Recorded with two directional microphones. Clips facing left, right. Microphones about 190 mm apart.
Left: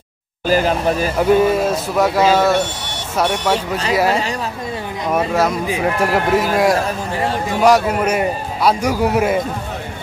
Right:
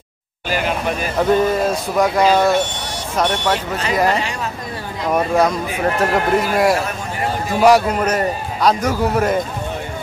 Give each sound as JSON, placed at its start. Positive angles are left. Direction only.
{"t": 0.5, "sound": "speech", "side_deg": 35}
{"t": 1.1, "sound": "a man's voice", "side_deg": 10}